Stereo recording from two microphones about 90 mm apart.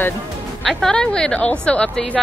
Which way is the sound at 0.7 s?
5° left (ahead or behind).